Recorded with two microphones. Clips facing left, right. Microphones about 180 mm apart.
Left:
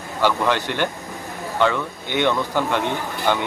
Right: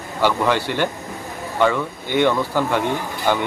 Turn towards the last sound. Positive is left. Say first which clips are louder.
# right 1 dB
turn(degrees=-10)  # may be behind; listen again after turning